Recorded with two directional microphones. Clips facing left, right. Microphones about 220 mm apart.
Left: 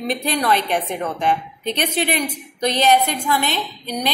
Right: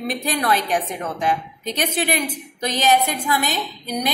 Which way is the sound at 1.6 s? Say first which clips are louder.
Left 1 dB; 45° right (ahead or behind).